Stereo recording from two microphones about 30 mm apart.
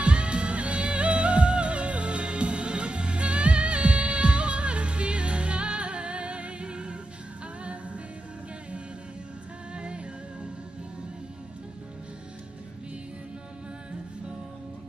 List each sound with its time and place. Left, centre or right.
0.0 s music: right
9.8 s music: right